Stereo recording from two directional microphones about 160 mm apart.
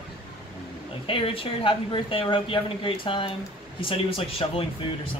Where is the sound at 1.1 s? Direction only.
35° left (ahead or behind).